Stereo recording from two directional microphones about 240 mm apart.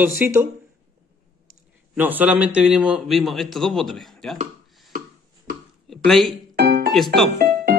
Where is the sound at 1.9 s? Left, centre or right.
Centre.